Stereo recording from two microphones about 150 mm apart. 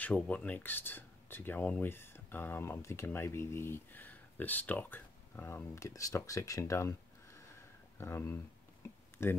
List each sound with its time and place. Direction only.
0.0 s speech: 10° left (ahead or behind)